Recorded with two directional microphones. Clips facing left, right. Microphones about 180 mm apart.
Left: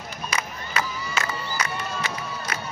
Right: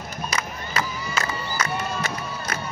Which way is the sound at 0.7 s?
40° right (ahead or behind).